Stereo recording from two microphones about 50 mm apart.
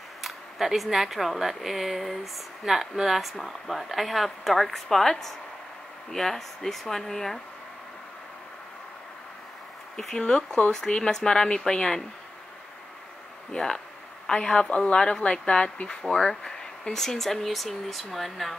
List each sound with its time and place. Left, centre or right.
0.2 s speech: centre
9.9 s speech: centre
13.5 s speech: centre
16.4 s speech: centre